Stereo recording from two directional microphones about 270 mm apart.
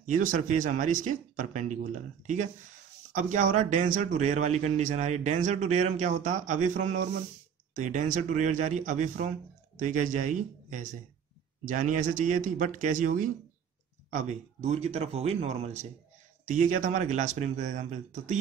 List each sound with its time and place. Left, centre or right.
0.0 s a man's voice: right